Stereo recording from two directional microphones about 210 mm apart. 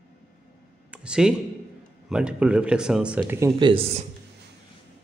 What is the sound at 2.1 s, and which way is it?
Speech, 5° right (ahead or behind).